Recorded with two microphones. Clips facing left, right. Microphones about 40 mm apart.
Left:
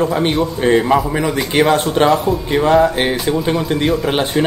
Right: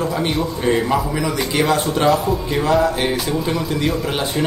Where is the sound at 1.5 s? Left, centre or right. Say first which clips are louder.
Left 5 dB; left.